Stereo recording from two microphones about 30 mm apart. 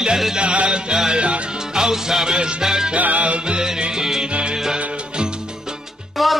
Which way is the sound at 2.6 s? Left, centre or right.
Centre.